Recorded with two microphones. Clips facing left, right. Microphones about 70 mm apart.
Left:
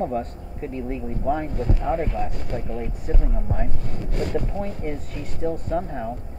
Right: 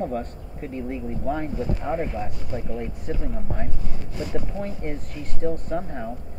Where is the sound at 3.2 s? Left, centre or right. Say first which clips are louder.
Left 2 dB; centre.